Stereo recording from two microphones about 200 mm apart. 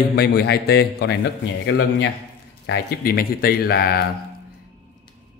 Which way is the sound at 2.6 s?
55° left (ahead or behind).